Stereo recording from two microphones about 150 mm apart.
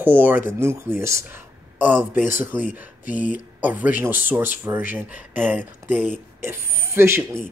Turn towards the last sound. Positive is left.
turn(degrees=-15)  # may be behind; listen again after turning